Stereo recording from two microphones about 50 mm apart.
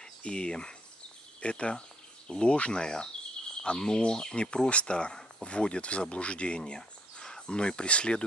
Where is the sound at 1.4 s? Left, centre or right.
Left.